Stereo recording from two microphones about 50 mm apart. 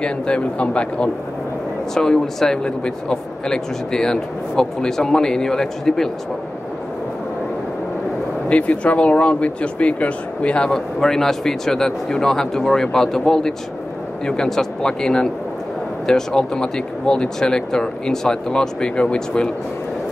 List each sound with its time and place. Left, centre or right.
0.0 s speech: left
8.5 s speech: left